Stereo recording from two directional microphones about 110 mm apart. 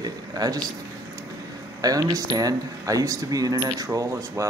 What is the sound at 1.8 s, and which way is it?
Speech, 35° right (ahead or behind).